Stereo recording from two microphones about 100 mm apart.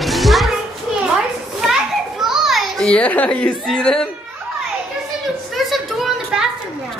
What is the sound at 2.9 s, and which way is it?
A woman's voice, 15° left (ahead or behind).